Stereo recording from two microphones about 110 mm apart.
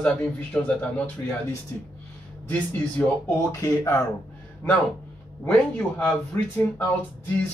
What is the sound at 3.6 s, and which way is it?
Speech, 35° left (ahead or behind).